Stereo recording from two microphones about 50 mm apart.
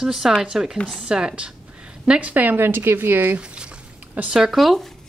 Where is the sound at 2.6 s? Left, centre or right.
Right.